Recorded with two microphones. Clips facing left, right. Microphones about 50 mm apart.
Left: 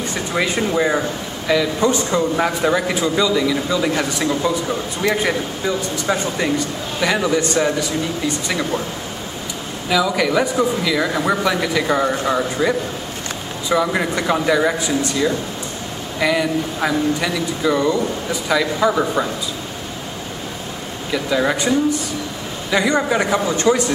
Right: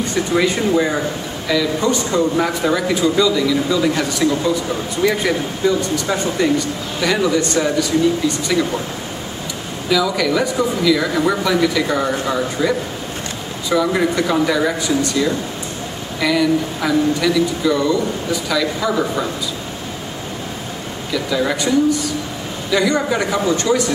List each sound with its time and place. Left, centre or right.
0.3 s a man's voice: centre
9.8 s a man's voice: centre
16.2 s speech: centre
21.1 s speech: left